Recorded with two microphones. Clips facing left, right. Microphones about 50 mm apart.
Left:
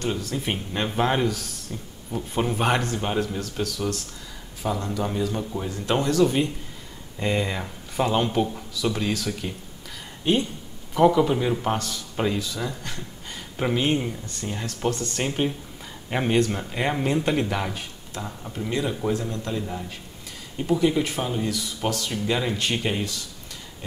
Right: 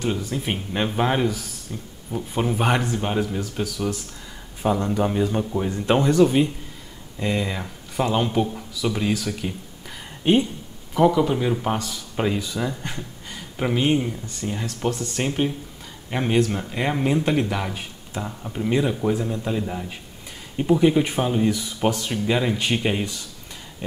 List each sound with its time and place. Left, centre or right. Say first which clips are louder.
0.0 s speech: right 2 dB; centre
4.6 s speech: right 5 dB; right
7.2 s speech: even; centre
9.8 s a sound: right 3 dB; centre
11.0 s speech: even; centre
13.3 s speech: right 1 dB; centre
17.7 s speech: right 3 dB; centre